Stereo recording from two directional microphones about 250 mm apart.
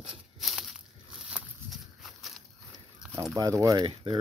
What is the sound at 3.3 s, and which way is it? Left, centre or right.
Speech, centre.